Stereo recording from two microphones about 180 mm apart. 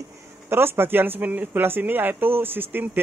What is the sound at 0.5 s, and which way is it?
Speech, 10° right (ahead or behind).